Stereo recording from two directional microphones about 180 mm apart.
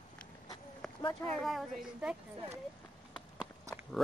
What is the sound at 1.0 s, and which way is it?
Speech, 20° left (ahead or behind).